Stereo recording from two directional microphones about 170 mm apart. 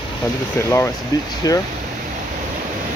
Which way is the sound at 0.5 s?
15° left (ahead or behind).